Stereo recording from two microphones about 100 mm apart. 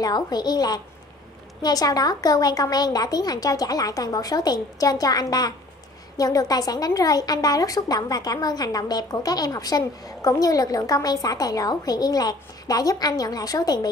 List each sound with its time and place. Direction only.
0.0 s a woman's voice: 45° left (ahead or behind)